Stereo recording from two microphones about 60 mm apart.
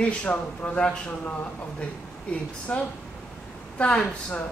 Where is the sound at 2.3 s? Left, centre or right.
Left.